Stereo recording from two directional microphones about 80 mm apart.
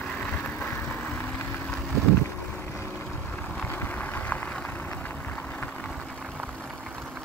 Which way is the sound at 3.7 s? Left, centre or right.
Left.